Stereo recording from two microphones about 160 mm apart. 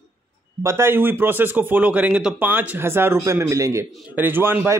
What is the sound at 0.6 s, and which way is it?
A man's voice, 15° right (ahead or behind).